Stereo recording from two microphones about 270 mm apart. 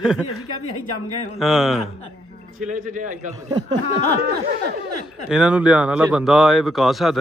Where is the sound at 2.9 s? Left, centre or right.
Right.